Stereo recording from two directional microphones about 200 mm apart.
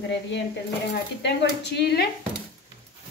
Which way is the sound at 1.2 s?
60° left (ahead or behind).